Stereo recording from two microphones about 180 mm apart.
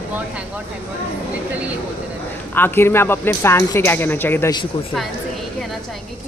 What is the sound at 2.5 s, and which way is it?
Speech, 10° left (ahead or behind).